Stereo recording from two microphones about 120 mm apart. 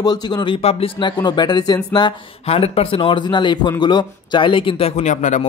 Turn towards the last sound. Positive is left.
turn(degrees=85)